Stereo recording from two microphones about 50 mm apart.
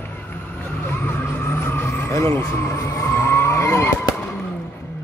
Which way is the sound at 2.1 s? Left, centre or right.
Left.